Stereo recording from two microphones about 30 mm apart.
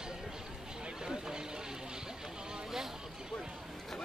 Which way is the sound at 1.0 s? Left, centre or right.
Right.